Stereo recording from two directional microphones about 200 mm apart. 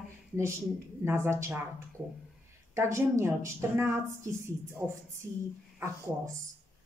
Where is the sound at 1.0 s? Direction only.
10° right (ahead or behind).